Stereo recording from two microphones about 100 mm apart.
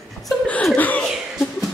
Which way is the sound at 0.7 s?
15° left (ahead or behind).